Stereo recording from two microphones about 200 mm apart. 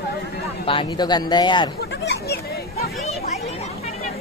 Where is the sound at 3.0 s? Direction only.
35° left (ahead or behind).